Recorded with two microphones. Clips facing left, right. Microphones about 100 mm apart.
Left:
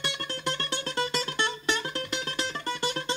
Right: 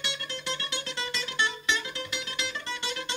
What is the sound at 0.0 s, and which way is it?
Music, 45° left (ahead or behind).